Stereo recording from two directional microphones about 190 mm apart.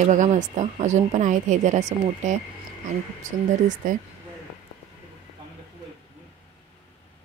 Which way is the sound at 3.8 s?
45° right (ahead or behind).